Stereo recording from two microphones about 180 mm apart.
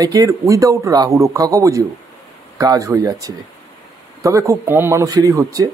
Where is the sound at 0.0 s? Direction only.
20° right (ahead or behind).